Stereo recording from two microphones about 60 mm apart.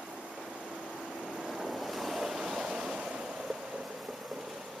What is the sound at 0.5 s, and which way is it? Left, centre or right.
Vehicle, centre.